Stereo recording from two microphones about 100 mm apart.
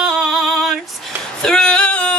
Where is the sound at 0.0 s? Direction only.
Centre (ahead or behind).